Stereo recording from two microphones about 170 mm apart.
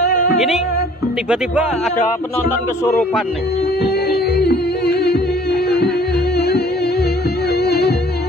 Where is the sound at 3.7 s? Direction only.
70° left (ahead or behind).